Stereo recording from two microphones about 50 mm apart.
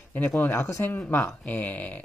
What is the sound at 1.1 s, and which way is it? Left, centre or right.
Speech, left.